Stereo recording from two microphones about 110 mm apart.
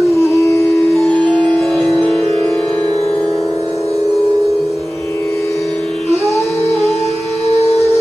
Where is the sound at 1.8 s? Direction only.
5° left (ahead or behind).